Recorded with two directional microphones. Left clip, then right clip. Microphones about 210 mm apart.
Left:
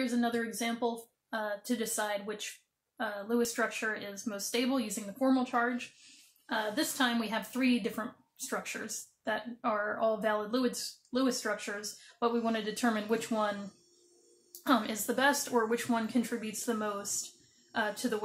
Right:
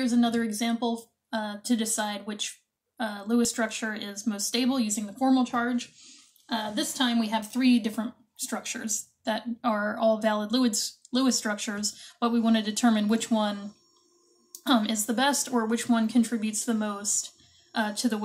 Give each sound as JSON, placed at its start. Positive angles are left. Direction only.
{"t": 0.0, "sound": "a woman's voice", "side_deg": 0}
{"t": 14.6, "sound": "speech", "side_deg": 0}